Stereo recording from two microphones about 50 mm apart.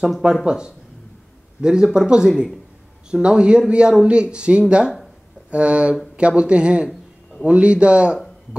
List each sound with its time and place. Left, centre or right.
0.5 s speech: centre